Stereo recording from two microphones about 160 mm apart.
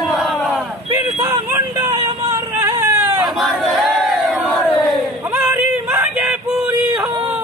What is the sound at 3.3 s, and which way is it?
Battle cry, centre (ahead or behind).